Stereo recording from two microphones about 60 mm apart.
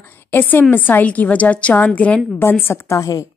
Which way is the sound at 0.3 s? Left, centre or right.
Left.